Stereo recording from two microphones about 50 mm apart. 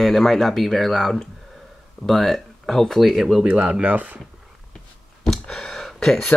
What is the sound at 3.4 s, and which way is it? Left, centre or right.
Speech, centre.